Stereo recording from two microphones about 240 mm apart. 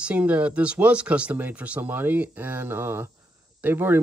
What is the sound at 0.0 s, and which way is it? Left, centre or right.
Speech, centre.